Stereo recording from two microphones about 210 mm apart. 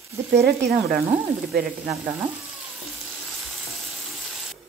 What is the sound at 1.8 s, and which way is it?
Speech, 10° right (ahead or behind).